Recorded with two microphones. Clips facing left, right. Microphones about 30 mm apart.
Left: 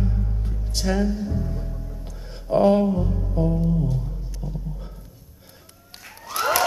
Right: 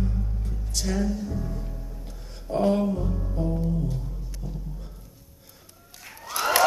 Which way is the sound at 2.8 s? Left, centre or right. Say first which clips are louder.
Left 4 dB; centre.